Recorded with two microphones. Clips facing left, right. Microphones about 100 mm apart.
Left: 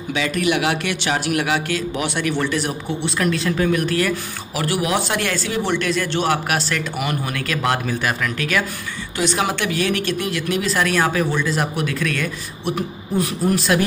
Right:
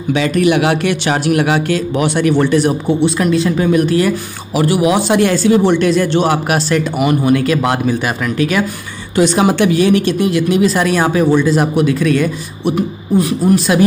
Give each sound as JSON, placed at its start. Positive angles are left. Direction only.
{"t": 0.1, "sound": "speech", "side_deg": -40}
{"t": 3.2, "sound": "speech", "side_deg": -10}